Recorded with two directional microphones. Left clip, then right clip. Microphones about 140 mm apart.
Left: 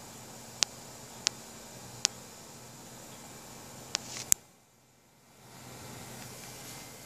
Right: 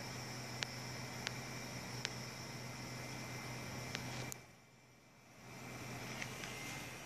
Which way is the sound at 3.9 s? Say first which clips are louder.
Left 11 dB; 60° left (ahead or behind).